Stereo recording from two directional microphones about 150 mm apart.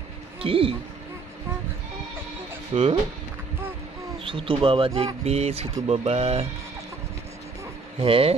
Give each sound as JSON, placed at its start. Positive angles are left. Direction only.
{"t": 0.4, "sound": "a man's voice", "side_deg": -40}
{"t": 2.7, "sound": "speech", "side_deg": -45}
{"t": 4.2, "sound": "speech", "side_deg": -35}
{"t": 8.0, "sound": "speech", "side_deg": -40}